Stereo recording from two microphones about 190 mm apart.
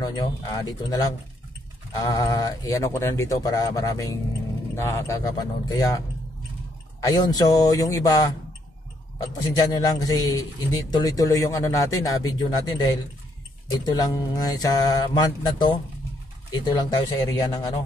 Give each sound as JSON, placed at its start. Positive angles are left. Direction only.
{"t": 0.0, "sound": "speech", "side_deg": 20}
{"t": 7.1, "sound": "speech", "side_deg": 20}